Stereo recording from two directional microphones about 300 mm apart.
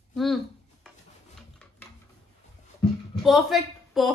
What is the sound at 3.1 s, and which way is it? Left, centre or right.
A woman's voice, centre.